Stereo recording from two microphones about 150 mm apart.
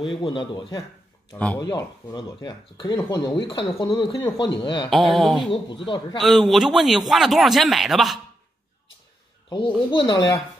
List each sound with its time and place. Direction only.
0.1 s a man's voice: 35° left (ahead or behind)
1.3 s speech: 10° left (ahead or behind)
1.6 s speech: 25° left (ahead or behind)
4.8 s speech: centre (ahead or behind)
9.8 s speech: 30° left (ahead or behind)